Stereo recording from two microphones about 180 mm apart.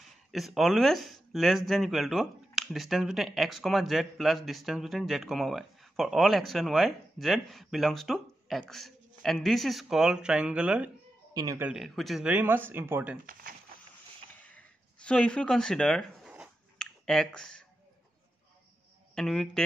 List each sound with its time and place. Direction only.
0.3 s speech: centre (ahead or behind)
11.3 s a man's voice: 20° right (ahead or behind)
11.6 s speech: centre (ahead or behind)
13.3 s speech: 50° right (ahead or behind)
14.4 s a sound: 10° left (ahead or behind)
19.1 s speech: centre (ahead or behind)